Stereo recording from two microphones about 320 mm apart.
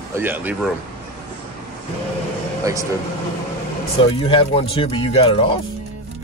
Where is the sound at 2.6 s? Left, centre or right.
Centre.